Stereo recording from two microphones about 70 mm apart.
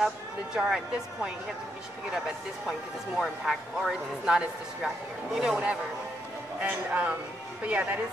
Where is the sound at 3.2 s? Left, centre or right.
Centre.